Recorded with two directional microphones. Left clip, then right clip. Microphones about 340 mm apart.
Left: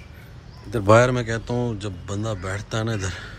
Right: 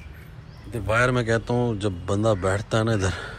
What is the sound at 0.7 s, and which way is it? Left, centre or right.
Speech, left.